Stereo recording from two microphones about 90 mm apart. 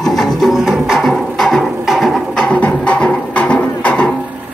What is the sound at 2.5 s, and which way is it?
Music, 15° left (ahead or behind).